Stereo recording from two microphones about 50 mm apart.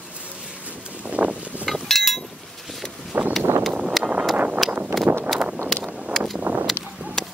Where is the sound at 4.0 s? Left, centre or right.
Right.